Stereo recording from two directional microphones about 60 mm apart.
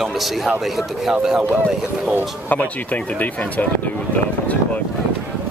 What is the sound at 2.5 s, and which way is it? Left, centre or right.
Speech, left.